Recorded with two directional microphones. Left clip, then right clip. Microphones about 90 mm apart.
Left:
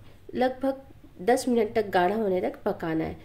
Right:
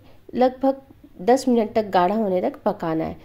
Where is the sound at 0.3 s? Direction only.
25° right (ahead or behind).